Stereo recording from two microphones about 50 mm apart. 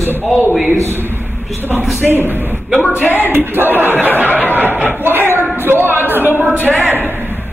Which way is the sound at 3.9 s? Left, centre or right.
Left.